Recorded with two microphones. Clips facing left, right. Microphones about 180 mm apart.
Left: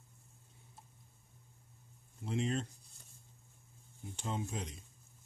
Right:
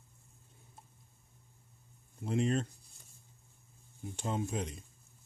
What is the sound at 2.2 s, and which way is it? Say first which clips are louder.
Speech: right 4 dB; 50° right (ahead or behind).